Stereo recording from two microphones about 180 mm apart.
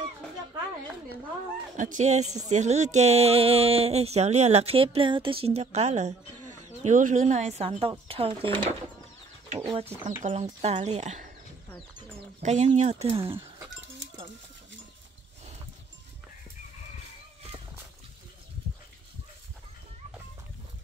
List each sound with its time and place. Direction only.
1.8 s speech: 45° right (ahead or behind)
12.4 s speech: 40° right (ahead or behind)
13.1 s speech: 30° right (ahead or behind)